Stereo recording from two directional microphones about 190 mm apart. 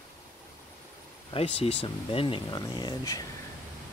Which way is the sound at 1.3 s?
30° left (ahead or behind).